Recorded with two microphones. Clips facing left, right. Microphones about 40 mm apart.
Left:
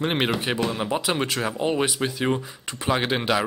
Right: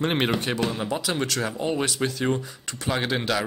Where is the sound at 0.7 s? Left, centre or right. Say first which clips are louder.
Left 2 dB; left.